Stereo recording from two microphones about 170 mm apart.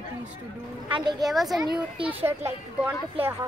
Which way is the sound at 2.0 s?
35° right (ahead or behind).